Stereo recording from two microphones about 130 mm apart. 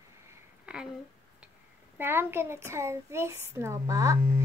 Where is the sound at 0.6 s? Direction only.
10° right (ahead or behind).